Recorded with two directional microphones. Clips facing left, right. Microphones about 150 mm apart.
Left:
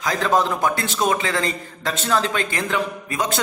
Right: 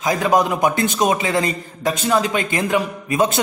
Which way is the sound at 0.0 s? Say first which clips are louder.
Right 3 dB; 15° right (ahead or behind).